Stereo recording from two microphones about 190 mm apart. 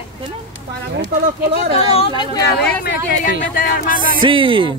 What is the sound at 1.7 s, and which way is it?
Speech, 30° left (ahead or behind).